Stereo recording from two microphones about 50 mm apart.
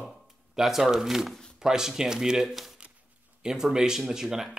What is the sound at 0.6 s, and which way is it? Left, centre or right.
Speech, centre.